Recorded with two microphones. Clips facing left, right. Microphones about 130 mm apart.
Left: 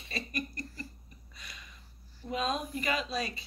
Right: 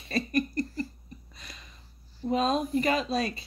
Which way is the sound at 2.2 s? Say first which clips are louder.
Right 7 dB; 35° right (ahead or behind).